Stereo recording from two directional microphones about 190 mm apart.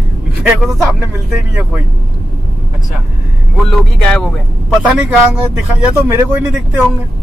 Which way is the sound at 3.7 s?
5° left (ahead or behind).